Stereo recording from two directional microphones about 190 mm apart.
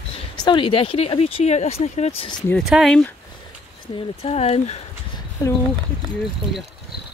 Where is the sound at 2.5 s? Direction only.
Centre (ahead or behind).